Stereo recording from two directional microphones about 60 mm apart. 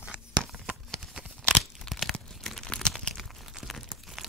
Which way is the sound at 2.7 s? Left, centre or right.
Centre.